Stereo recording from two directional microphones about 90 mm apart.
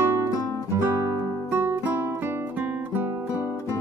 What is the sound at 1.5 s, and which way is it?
Music, 25° right (ahead or behind).